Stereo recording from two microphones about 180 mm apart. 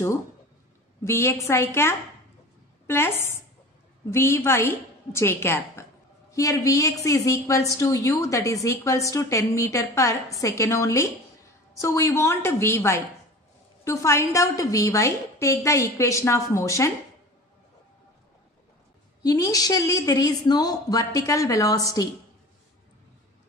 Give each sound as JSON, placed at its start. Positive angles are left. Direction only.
{"t": 1.0, "sound": "a woman's voice", "side_deg": 15}
{"t": 4.1, "sound": "a woman's voice", "side_deg": 15}
{"t": 19.2, "sound": "a woman's voice", "side_deg": 20}